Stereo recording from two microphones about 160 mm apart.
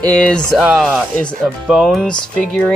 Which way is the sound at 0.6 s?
5° right (ahead or behind).